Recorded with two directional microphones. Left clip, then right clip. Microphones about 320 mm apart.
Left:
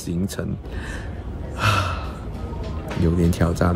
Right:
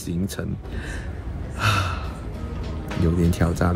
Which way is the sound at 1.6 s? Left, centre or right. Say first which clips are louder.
Left 2 dB; centre.